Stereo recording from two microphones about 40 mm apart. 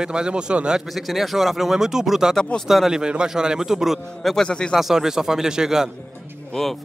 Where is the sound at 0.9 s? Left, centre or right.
Centre.